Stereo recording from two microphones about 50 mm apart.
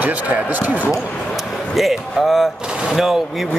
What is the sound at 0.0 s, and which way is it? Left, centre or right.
Speech, right.